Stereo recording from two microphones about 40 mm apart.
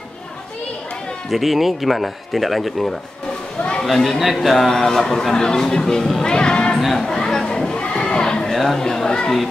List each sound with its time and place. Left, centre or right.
1.3 s a man's voice: centre; by 6.8 s left
7.0 s chatter: centre
7.8 s children playing: left